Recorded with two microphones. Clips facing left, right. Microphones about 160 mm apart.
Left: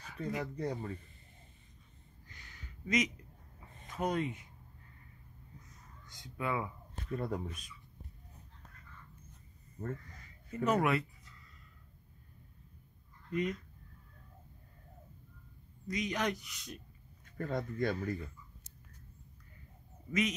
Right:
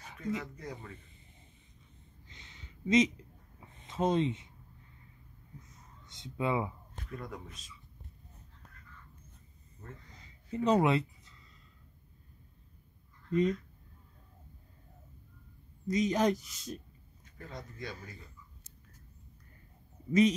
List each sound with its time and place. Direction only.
0.4 s speech: 35° left (ahead or behind)
2.2 s a sound: 25° right (ahead or behind)
3.7 s speech: 25° right (ahead or behind)
6.0 s speech: 25° right (ahead or behind)
7.1 s speech: 30° left (ahead or behind)
10.0 s a sound: 20° right (ahead or behind)
13.3 s speech: 30° right (ahead or behind)
15.9 s speech: 35° right (ahead or behind)
17.4 s speech: 55° left (ahead or behind)
20.1 s speech: 35° right (ahead or behind)